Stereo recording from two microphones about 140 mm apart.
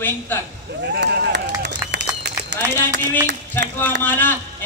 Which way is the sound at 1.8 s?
15° right (ahead or behind).